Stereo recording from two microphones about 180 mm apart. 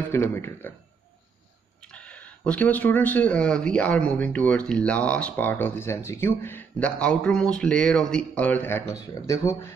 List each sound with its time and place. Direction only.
0.1 s speech: 15° left (ahead or behind)
1.9 s speech: 5° left (ahead or behind)